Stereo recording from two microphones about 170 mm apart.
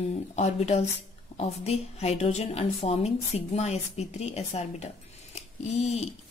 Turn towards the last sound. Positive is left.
turn(degrees=40)  # may be behind; listen again after turning